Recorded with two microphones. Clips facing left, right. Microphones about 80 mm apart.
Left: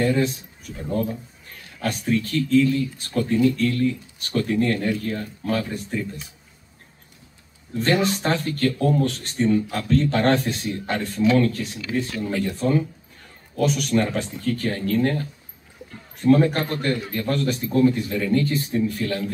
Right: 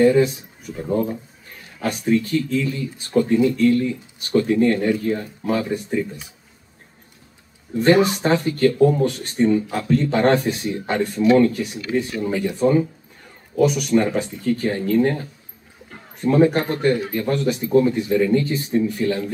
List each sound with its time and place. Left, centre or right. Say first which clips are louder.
0.0 s speech: right 6 dB; centre
0.8 s speech: right 3 dB; right
7.7 s speech: right 6 dB; centre